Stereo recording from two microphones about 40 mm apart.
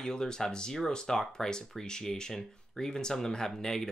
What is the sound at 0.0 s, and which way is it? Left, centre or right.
Speech, centre.